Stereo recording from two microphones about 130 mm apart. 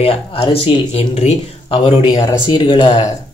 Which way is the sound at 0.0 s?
50° left (ahead or behind).